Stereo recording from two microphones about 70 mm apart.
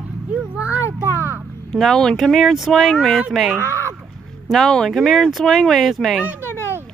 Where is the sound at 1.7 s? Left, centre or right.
Centre.